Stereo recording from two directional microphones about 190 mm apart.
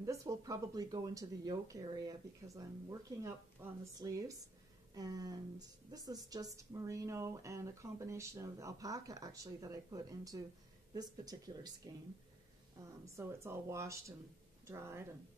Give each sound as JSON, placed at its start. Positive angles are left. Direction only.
{"t": 0.0, "sound": "speech", "side_deg": -15}
{"t": 13.0, "sound": "speech", "side_deg": -15}